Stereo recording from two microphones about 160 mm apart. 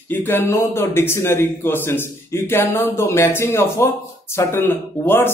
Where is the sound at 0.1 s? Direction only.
10° left (ahead or behind).